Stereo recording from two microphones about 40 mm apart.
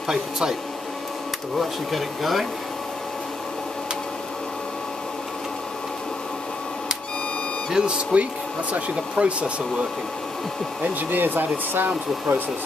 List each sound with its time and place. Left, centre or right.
0.1 s speech: centre
1.6 s speech: centre
7.7 s speech: right
10.8 s speech: right